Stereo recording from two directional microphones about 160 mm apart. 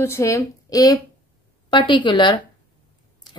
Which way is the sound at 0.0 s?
15° left (ahead or behind).